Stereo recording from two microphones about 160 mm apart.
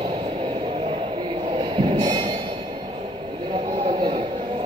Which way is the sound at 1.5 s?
30° right (ahead or behind).